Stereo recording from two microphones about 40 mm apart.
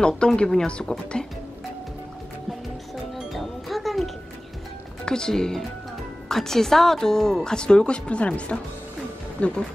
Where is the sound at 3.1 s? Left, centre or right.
Centre.